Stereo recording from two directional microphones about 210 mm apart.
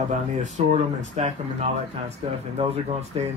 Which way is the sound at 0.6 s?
30° right (ahead or behind).